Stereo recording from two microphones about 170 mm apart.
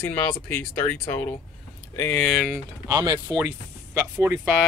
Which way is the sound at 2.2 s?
5° left (ahead or behind).